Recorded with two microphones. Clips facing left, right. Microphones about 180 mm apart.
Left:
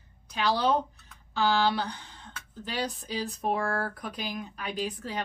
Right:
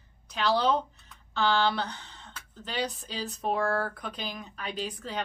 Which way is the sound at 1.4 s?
10° left (ahead or behind).